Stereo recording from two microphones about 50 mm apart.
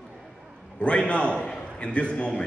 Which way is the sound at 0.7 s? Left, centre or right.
Left.